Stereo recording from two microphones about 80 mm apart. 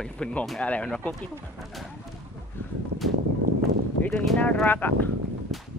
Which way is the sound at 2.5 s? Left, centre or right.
Left.